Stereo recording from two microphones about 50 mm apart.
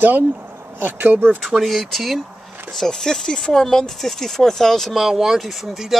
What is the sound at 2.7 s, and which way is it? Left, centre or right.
Speech, centre.